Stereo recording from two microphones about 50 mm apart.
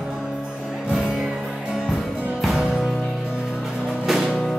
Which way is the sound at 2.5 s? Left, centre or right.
Centre.